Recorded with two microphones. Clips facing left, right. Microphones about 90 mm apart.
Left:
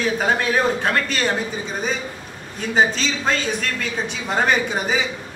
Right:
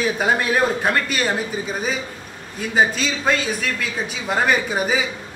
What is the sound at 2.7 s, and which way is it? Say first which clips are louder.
A man's voice: even; 5° right (ahead or behind).